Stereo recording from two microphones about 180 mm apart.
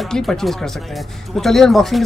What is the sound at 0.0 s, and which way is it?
Speech, centre (ahead or behind).